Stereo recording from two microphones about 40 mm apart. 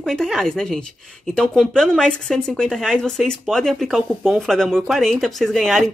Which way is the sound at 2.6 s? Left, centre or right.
Centre.